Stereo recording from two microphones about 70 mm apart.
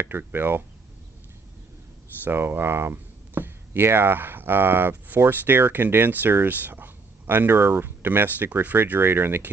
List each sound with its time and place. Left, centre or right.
0.0 s speech: right
2.2 s speech: right